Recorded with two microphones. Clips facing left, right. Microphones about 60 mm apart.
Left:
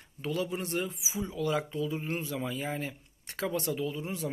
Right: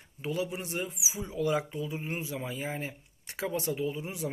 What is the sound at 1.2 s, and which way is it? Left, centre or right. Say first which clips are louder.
Speech: right 1 dB; right.